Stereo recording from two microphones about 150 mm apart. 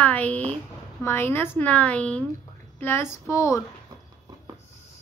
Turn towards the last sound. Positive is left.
turn(degrees=20)  # may be behind; listen again after turning